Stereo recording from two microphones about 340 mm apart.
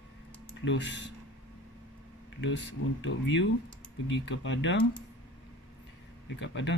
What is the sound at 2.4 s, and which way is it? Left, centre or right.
Speech, left.